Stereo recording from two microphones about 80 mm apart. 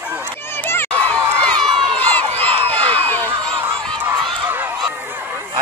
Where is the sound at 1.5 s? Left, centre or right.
Right.